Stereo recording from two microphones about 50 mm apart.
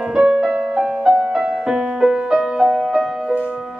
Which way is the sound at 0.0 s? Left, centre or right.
Centre.